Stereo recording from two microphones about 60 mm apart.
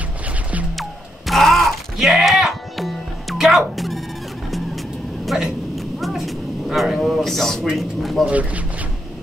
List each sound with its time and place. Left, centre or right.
0.7 s a sound: centre
5.2 s vehicle: centre
7.7 s speech: centre
8.3 s speech: right